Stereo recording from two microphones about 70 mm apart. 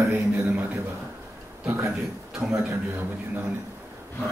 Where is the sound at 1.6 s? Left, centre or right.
Right.